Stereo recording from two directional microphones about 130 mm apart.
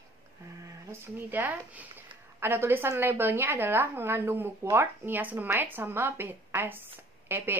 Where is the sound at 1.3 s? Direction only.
15° right (ahead or behind).